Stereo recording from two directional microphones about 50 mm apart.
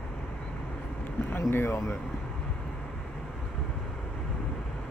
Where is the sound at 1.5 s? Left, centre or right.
Left.